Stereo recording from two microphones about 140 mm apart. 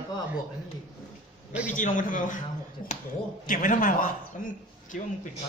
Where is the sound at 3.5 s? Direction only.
75° left (ahead or behind).